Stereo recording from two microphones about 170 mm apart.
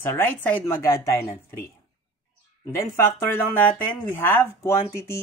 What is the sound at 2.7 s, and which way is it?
Speech, 15° left (ahead or behind).